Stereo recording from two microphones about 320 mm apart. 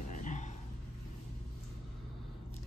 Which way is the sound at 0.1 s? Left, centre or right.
Left.